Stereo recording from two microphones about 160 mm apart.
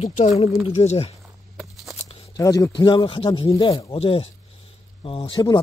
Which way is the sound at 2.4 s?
20° left (ahead or behind).